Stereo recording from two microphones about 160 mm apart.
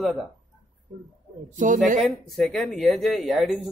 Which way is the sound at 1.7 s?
50° right (ahead or behind).